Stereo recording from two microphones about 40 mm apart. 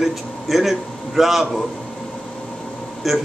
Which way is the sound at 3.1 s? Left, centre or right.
Centre.